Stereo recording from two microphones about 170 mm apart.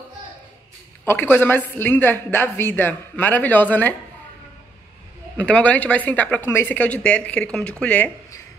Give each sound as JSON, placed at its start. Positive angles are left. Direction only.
{"t": 1.0, "sound": "a woman's voice", "side_deg": 10}
{"t": 5.4, "sound": "a woman's voice", "side_deg": 10}